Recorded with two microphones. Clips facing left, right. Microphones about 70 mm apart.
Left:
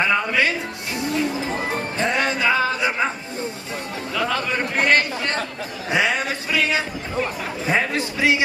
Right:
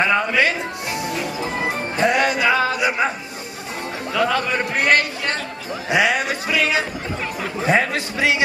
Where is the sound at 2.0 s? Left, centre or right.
Centre.